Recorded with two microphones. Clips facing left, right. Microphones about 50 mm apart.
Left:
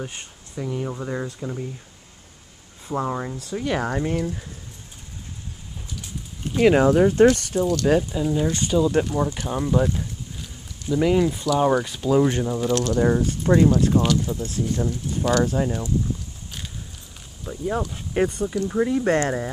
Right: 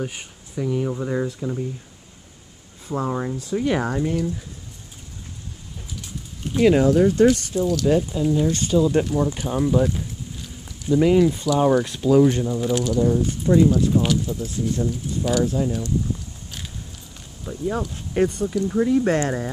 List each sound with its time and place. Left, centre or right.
0.0 s speech: centre
0.6 s speech: centre
2.9 s speech: centre
3.9 s speech: centre
6.6 s speech: left
7.5 s speech: left
8.1 s speech: centre
8.7 s speech: centre
13.0 s speech: left
13.9 s speech: centre
15.4 s speech: left
16.4 s biting: centre
17.5 s speech: centre